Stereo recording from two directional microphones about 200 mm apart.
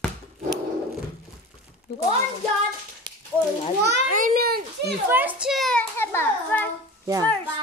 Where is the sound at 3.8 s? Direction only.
50° right (ahead or behind).